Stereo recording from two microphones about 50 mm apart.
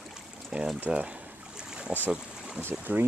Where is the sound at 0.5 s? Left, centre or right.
Centre.